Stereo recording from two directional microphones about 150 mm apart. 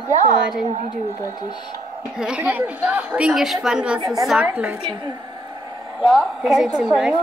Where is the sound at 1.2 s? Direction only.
25° left (ahead or behind).